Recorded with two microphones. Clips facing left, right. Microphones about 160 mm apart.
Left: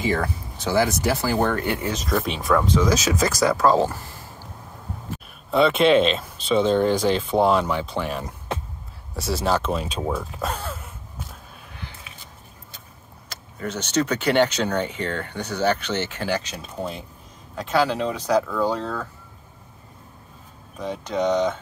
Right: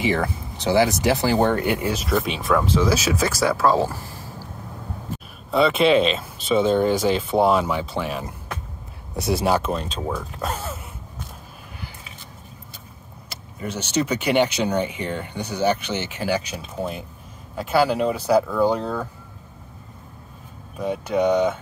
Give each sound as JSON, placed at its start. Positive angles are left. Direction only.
{"t": 0.2, "sound": "speech", "side_deg": -20}
{"t": 5.5, "sound": "speech", "side_deg": 0}
{"t": 9.1, "sound": "speech", "side_deg": -15}
{"t": 9.7, "sound": "speech", "side_deg": 5}
{"t": 13.3, "sound": "speech", "side_deg": -10}
{"t": 20.7, "sound": "speech", "side_deg": -10}